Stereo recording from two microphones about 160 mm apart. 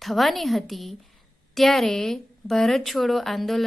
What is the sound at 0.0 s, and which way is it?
A woman's voice, centre (ahead or behind).